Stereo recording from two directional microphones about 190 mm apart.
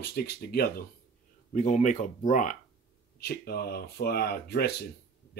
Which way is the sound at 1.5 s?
40° left (ahead or behind).